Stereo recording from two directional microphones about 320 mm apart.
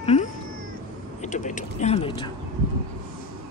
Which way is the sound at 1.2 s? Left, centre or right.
Left.